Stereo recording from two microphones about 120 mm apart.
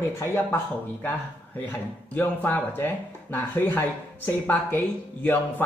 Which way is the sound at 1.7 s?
15° left (ahead or behind).